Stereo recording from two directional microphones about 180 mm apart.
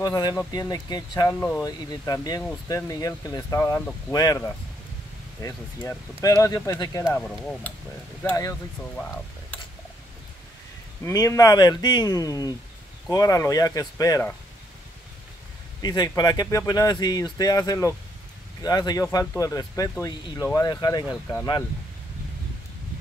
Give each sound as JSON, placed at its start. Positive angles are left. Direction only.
{"t": 0.0, "sound": "speech", "side_deg": 20}
{"t": 5.8, "sound": "speech", "side_deg": 15}
{"t": 7.2, "sound": "speech", "side_deg": 5}
{"t": 11.1, "sound": "speech", "side_deg": 20}
{"t": 15.8, "sound": "speech", "side_deg": 25}